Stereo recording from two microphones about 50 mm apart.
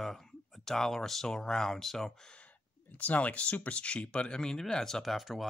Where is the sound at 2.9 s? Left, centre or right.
Left; by 5.4 s centre.